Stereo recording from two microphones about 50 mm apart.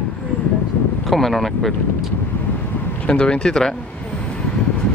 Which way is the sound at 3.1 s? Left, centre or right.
Centre.